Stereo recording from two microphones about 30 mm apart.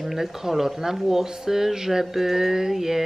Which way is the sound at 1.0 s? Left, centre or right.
Centre.